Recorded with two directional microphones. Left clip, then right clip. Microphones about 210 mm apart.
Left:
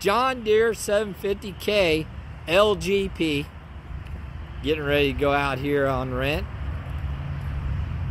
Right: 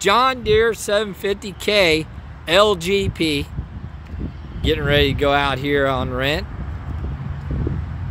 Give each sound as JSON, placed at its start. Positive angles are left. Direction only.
{"t": 0.0, "sound": "speech", "side_deg": -20}
{"t": 2.8, "sound": "speech", "side_deg": -60}
{"t": 3.1, "sound": "speech", "side_deg": -20}
{"t": 4.6, "sound": "speech", "side_deg": -20}